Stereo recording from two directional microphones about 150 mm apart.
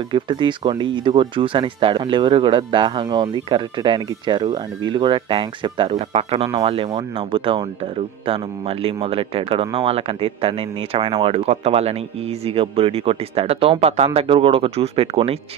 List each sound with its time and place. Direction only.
0.1 s speech: 30° right (ahead or behind)